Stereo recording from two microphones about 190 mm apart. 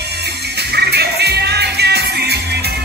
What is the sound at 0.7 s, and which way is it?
Music, 60° right (ahead or behind).